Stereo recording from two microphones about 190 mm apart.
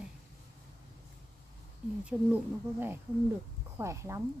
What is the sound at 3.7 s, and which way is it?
Speech, 15° right (ahead or behind).